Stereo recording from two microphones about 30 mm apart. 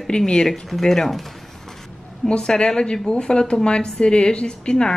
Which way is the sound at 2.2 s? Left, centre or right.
Left.